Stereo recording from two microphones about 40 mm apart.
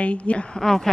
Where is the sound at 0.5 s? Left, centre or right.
Centre.